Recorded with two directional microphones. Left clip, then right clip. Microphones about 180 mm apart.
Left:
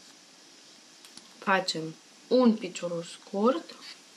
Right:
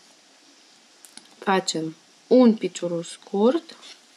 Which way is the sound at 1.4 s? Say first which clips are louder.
Right 4 dB; 30° right (ahead or behind).